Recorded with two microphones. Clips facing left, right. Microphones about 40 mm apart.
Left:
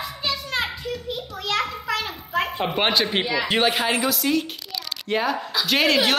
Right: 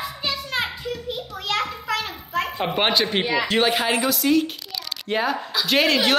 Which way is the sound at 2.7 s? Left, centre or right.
Centre.